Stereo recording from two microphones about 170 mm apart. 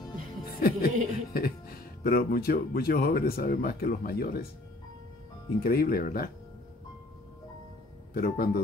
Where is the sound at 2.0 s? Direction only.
60° left (ahead or behind).